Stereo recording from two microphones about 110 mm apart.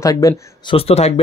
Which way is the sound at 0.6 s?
60° left (ahead or behind).